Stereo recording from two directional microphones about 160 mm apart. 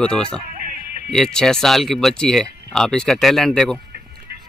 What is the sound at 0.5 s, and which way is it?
Music, 55° right (ahead or behind).